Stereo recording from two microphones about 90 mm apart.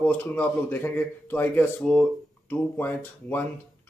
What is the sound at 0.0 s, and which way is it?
A man's voice, 15° left (ahead or behind).